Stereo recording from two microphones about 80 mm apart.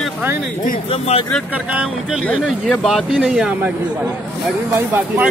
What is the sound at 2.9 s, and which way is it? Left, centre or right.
Speech, centre.